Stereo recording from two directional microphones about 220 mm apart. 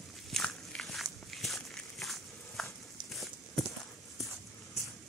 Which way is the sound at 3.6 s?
Centre (ahead or behind).